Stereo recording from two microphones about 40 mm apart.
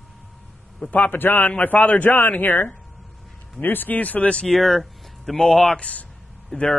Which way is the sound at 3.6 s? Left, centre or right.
Left.